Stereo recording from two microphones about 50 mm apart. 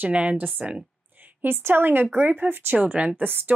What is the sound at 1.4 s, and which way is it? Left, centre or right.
A woman's voice, right.